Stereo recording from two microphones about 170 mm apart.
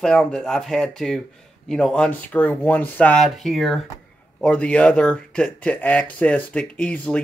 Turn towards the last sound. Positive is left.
turn(degrees=10)  # may be behind; listen again after turning